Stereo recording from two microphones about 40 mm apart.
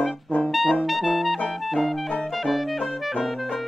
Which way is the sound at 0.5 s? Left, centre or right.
Centre.